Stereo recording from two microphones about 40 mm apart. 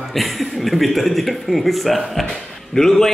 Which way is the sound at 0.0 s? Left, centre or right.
Centre.